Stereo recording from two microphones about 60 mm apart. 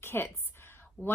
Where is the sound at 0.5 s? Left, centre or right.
Left.